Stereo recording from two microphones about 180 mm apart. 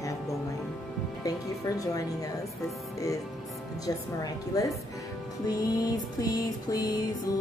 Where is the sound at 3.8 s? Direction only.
20° left (ahead or behind).